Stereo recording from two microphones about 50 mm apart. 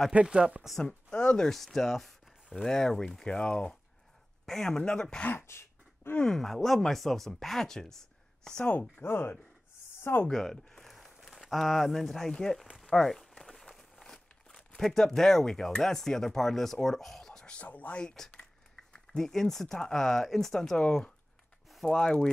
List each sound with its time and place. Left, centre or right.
0.1 s speech: centre
0.8 s speech: centre
1.5 s speech: centre
5.3 s a sound: left
6.2 s speech: centre
9.0 s speech: left
10.3 s crumpling: centre
11.5 s speech: centre
12.8 s crumpling: centre
14.8 s speech: centre
17.5 s speech: left
17.9 s speech: centre
20.7 s speech: left